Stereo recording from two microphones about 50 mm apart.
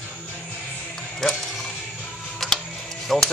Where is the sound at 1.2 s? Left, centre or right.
Centre.